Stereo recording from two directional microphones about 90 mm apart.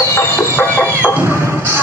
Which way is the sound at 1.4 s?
30° right (ahead or behind).